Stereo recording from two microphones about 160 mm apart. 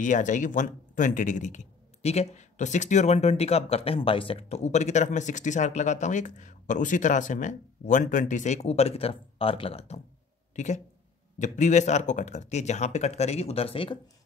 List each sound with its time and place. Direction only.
0.0 s speech: 50° left (ahead or behind)
10.5 s speech: 50° left (ahead or behind)